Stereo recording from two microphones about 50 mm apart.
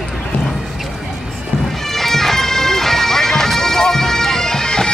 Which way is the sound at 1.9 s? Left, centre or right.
Centre.